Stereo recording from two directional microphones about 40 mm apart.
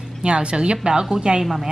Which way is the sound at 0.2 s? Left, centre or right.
Right.